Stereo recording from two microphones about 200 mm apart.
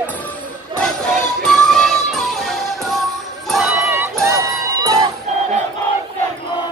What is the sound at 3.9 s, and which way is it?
Music, 15° right (ahead or behind).